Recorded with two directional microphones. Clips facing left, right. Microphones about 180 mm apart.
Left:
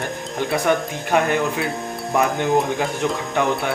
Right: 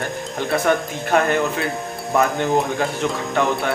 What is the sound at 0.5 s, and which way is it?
Speech, 15° left (ahead or behind).